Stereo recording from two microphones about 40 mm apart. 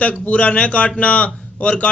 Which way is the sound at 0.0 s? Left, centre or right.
Left.